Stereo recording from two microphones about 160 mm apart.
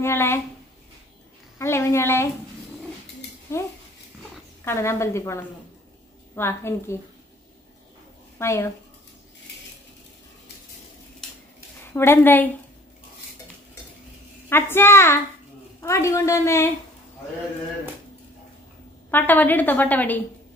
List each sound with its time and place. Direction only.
0.0 s a woman's voice: 15° left (ahead or behind)
1.6 s a woman's voice: 15° left (ahead or behind)
3.5 s a woman's voice: 15° left (ahead or behind)
8.4 s speech: 15° left (ahead or behind)
11.9 s a woman's voice: 15° left (ahead or behind)
14.5 s a woman's voice: 15° left (ahead or behind)
19.0 s a woman's voice: 10° left (ahead or behind)